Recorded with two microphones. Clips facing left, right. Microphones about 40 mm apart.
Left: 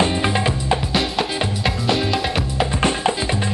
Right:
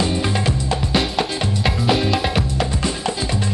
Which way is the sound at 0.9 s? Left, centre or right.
Centre.